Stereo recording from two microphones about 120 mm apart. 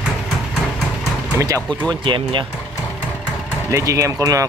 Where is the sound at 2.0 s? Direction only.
45° right (ahead or behind).